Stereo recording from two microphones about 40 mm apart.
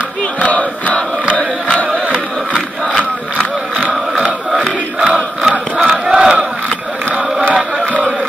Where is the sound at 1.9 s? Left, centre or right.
Right.